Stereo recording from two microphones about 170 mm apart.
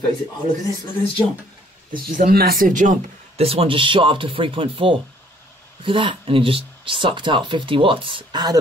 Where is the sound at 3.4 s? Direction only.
35° right (ahead or behind).